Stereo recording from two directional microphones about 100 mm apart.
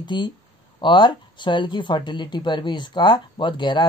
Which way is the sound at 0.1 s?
50° left (ahead or behind).